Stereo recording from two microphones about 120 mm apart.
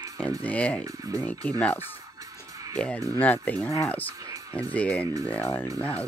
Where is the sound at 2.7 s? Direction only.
10° left (ahead or behind).